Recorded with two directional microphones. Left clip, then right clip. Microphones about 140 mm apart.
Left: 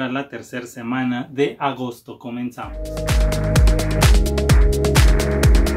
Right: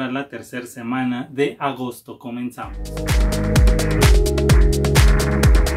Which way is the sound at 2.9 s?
Centre (ahead or behind).